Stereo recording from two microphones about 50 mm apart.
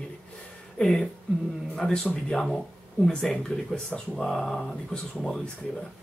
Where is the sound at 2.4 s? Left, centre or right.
Centre.